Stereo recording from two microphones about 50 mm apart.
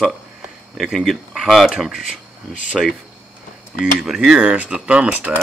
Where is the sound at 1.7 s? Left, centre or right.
Centre.